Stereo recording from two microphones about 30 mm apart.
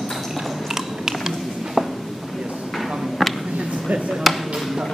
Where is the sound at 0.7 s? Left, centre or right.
Centre.